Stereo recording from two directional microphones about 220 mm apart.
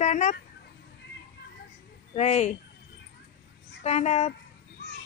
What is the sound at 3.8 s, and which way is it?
Music, 30° left (ahead or behind).